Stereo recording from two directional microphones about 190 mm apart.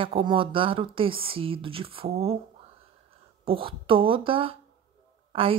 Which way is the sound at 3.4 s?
30° right (ahead or behind).